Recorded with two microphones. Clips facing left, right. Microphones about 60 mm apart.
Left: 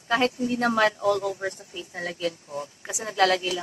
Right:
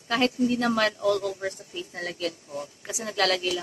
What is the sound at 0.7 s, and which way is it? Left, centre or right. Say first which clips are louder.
Speech: left 3 dB; left.